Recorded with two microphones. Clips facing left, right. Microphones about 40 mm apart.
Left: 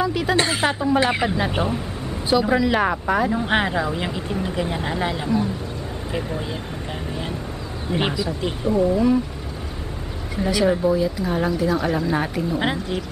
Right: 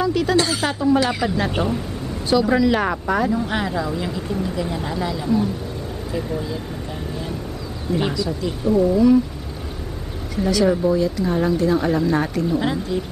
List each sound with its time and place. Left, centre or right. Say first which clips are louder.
0.0 s speech: right 2 dB; centre
0.4 s speech: even; left
1.3 s speech: right 1 dB; centre
3.3 s speech: left 1 dB; left
7.9 s speech: right 1 dB; left
10.3 s speech: right 2 dB; centre
12.5 s speech: right 1 dB; left